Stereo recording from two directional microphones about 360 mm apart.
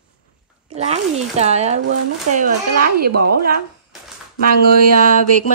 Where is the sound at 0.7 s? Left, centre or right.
Centre.